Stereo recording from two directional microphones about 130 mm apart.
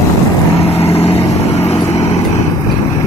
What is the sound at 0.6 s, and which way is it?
Vehicle, 50° left (ahead or behind).